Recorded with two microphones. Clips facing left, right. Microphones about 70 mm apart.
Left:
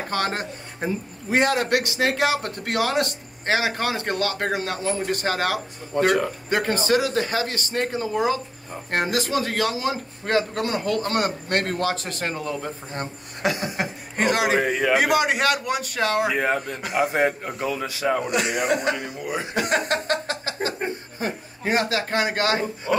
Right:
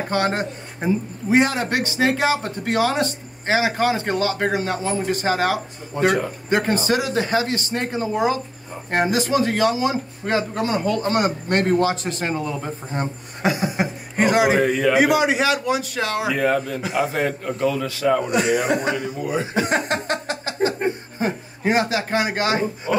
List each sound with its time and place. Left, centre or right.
0.1 s speech: centre
13.4 s a man's voice: centre
17.0 s a man's voice: left
18.1 s a man's voice: centre
21.7 s speech: centre